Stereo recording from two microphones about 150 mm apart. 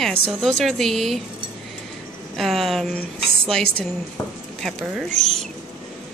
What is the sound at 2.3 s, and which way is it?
Speech, centre (ahead or behind).